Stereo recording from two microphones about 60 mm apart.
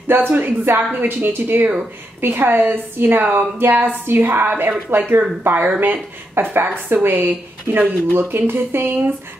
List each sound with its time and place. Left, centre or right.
0.1 s speech: right